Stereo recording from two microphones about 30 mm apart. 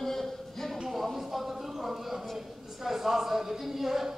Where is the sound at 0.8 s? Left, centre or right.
Centre.